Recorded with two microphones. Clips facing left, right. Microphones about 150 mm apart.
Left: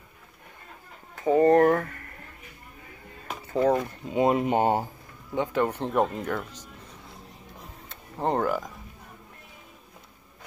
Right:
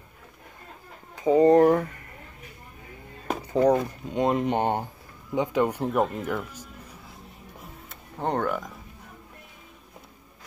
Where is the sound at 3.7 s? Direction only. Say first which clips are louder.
Right 1 dB; 5° left (ahead or behind).